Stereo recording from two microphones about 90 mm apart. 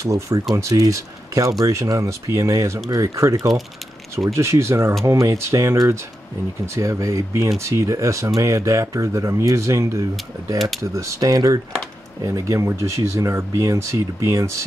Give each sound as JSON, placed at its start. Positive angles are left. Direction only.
{"t": 0.0, "sound": "speech", "side_deg": -35}